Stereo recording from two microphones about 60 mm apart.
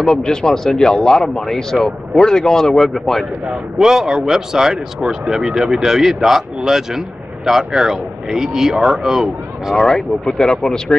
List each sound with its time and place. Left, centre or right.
0.0 s speech: centre
3.4 s speech: centre
9.8 s speech: centre